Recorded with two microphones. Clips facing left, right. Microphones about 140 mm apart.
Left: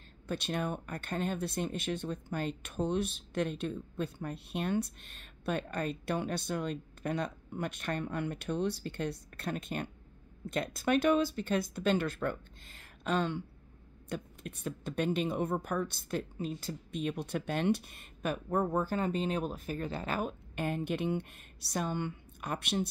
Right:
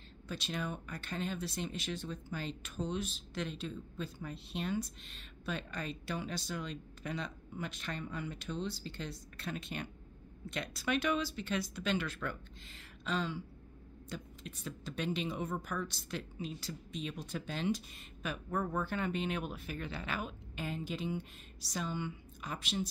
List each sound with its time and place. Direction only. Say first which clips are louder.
0.3 s a woman's voice: left 5 dB; 55° left (ahead or behind)